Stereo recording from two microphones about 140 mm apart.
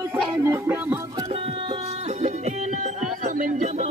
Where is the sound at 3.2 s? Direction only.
70° right (ahead or behind); by 3.9 s 55° right (ahead or behind).